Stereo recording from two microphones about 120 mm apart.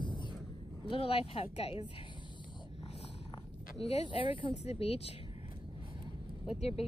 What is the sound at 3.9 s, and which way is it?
Speech, 45° left (ahead or behind).